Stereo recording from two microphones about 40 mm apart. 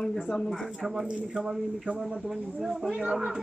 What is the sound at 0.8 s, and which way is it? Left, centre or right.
A man's voice, centre.